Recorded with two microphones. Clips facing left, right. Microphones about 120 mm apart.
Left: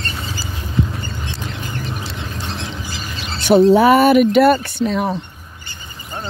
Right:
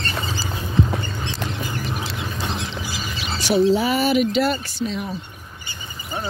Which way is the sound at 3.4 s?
55° left (ahead or behind).